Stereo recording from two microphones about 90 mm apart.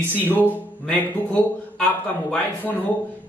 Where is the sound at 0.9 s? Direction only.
20° left (ahead or behind).